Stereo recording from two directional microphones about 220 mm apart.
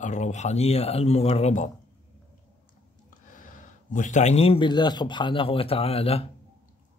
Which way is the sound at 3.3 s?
35° left (ahead or behind).